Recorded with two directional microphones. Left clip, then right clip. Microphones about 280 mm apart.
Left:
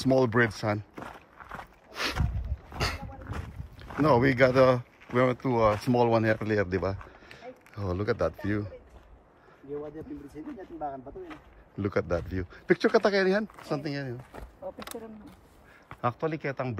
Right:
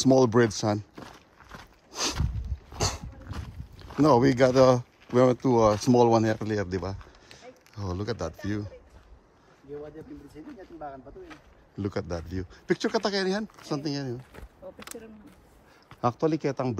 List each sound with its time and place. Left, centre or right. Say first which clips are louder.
0.0 s speech: right 3 dB; centre
0.9 s walk: left 4 dB; centre
1.9 s walk: right 1 dB; centre
2.1 s a sound: left 2 dB; centre
3.3 s horse: left 2 dB; centre
4.0 s speech: right 2 dB; centre
10.4 s speech: left 4 dB; left
11.7 s speech: left 4 dB; centre
16.0 s speech: right 4 dB; centre